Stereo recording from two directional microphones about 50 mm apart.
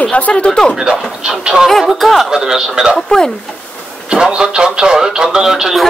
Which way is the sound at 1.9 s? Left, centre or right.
Centre.